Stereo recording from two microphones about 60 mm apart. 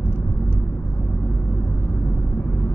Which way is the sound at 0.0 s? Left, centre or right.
Left.